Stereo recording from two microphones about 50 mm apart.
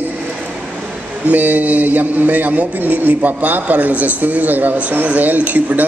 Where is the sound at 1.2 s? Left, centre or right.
Right.